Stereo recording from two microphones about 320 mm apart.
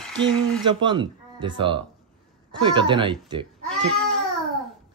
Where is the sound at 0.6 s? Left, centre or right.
Centre.